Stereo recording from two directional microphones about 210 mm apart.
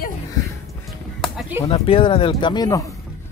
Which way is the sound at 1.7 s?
25° left (ahead or behind).